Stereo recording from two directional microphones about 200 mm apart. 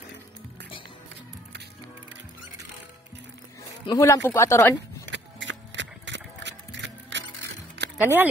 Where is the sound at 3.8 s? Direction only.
15° left (ahead or behind).